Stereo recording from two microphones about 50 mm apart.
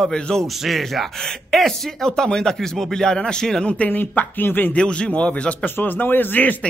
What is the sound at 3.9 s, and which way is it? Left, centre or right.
Speech, left.